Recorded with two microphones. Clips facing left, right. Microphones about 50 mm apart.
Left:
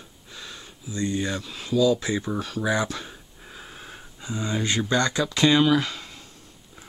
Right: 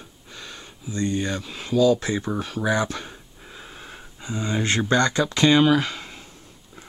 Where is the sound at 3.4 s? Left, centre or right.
Centre.